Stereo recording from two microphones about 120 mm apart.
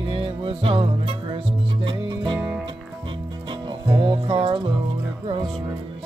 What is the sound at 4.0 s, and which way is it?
Music, 45° right (ahead or behind).